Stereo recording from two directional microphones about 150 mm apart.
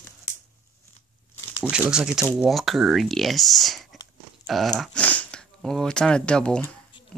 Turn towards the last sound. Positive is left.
turn(degrees=5)  # may be behind; listen again after turning